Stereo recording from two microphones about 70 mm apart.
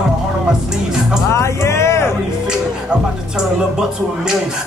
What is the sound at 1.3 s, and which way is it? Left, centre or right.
Music, left.